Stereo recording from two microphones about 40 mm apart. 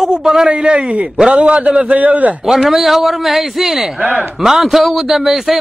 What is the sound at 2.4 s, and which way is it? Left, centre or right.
A man's voice, centre.